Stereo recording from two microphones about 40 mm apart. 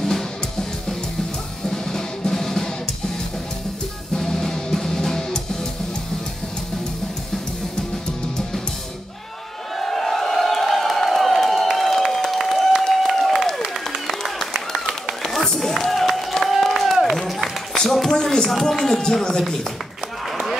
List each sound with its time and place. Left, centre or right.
1.7 s music: centre
4.2 s music: centre
9.8 s crowd: centre
12.8 s applause: centre
14.7 s a sound: centre